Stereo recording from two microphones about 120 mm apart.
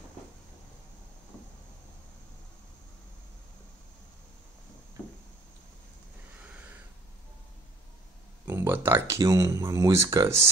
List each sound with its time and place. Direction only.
8.5 s speech: 20° right (ahead or behind)